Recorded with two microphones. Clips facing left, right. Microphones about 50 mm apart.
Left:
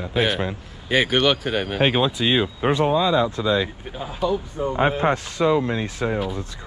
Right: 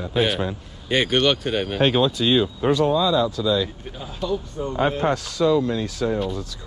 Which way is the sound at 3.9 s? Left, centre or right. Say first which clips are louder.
Left 6 dB; centre.